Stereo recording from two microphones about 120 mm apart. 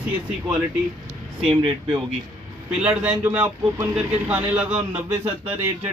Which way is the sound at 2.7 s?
10° right (ahead or behind).